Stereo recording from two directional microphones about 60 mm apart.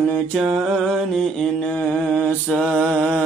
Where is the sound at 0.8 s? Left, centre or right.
Centre.